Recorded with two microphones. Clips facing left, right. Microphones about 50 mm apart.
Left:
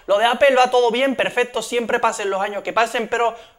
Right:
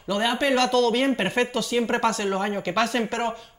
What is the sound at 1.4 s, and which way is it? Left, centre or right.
Speech, centre.